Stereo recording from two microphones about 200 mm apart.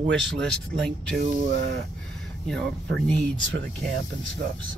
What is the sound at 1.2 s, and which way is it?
Speech, 60° right (ahead or behind).